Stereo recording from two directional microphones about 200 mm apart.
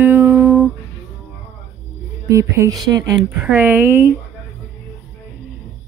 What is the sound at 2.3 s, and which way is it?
Speech, 15° right (ahead or behind).